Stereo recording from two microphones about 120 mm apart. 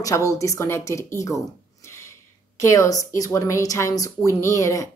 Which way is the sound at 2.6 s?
25° left (ahead or behind).